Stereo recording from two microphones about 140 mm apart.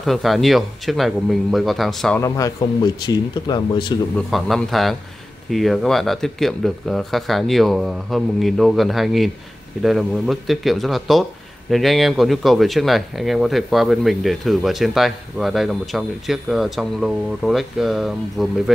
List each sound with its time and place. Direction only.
0.0 s speech: centre (ahead or behind)
2.1 s speech: 25° left (ahead or behind)
4.3 s speech: centre (ahead or behind)